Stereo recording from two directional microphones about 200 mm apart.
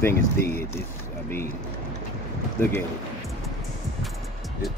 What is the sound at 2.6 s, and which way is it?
Speech, 10° left (ahead or behind).